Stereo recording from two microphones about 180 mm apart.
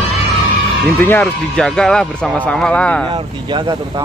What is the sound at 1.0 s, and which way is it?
Speech, 10° left (ahead or behind).